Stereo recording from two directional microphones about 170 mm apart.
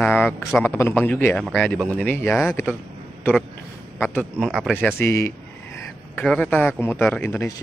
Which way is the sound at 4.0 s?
10° left (ahead or behind).